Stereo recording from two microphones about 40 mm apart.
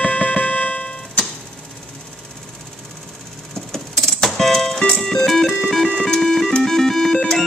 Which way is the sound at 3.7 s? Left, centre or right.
Centre.